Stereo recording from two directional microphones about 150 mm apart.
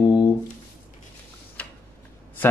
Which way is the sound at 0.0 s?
30° left (ahead or behind).